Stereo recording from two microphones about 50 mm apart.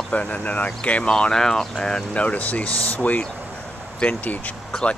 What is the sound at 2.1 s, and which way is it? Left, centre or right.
Speech, left.